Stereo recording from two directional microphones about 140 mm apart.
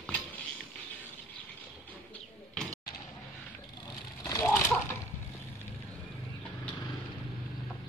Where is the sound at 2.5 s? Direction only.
5° left (ahead or behind).